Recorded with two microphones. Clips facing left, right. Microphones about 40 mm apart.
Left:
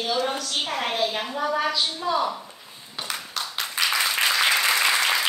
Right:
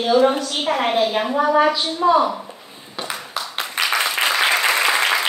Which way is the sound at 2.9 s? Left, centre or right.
Centre.